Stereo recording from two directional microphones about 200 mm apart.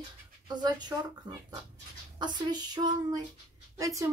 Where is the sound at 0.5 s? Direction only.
20° right (ahead or behind).